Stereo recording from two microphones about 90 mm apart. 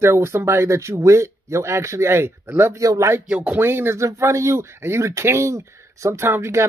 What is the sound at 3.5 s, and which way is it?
A man's voice, 25° right (ahead or behind).